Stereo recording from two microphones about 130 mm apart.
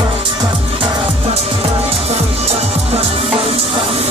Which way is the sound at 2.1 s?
55° right (ahead or behind).